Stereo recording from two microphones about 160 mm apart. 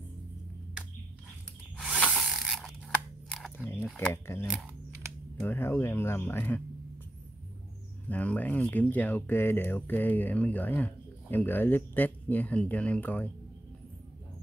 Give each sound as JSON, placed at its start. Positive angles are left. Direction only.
{"t": 1.8, "sound": "mechanisms", "side_deg": 0}
{"t": 2.9, "sound": "scissors", "side_deg": 5}
{"t": 3.5, "sound": "a sound", "side_deg": 15}
{"t": 4.1, "sound": "speech", "side_deg": 15}
{"t": 8.1, "sound": "speech", "side_deg": 10}